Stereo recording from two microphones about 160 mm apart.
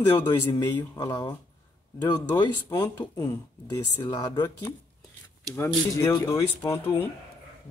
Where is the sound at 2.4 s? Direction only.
30° left (ahead or behind); by 7.0 s 10° left (ahead or behind).